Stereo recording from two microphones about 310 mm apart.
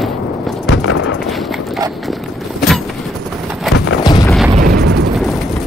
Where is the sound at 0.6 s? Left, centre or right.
Left.